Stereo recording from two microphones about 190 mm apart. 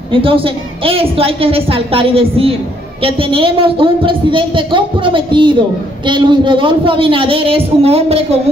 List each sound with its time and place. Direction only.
0.1 s a woman's voice: 30° right (ahead or behind)